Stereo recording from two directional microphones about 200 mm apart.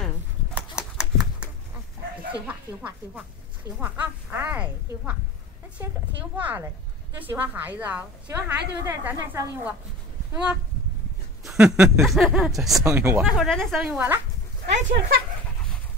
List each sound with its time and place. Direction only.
0.6 s a sound: 5° right (ahead or behind)
2.4 s a woman's voice: 10° right (ahead or behind)
6.3 s a woman's voice: 10° right (ahead or behind)
12.8 s a woman's voice: 10° right (ahead or behind)
13.2 s speech: centre (ahead or behind)
14.7 s speech: 65° right (ahead or behind)